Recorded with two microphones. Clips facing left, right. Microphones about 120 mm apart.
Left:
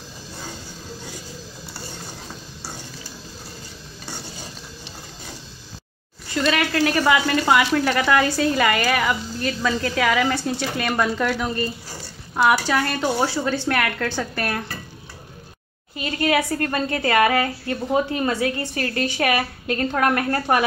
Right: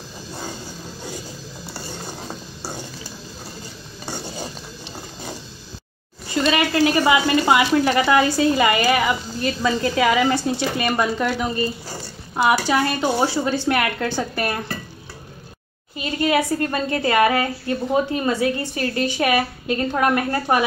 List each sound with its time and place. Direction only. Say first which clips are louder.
6.3 s speech: right 2 dB; 10° right (ahead or behind)
16.0 s a woman's voice: right 1 dB; 25° right (ahead or behind)